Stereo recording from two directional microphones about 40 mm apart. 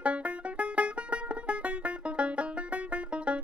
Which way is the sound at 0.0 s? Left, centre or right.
Right.